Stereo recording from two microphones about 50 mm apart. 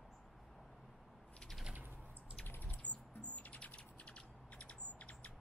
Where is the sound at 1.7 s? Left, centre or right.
Right.